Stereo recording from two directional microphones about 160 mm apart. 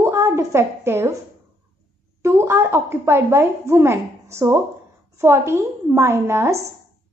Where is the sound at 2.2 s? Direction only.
15° right (ahead or behind).